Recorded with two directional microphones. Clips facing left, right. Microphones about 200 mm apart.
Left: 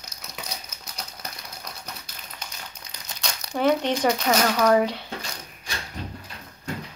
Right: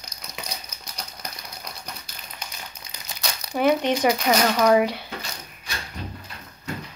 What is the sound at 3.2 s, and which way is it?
Speech, 10° right (ahead or behind).